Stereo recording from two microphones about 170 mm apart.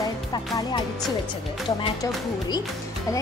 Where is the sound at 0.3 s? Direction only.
25° left (ahead or behind).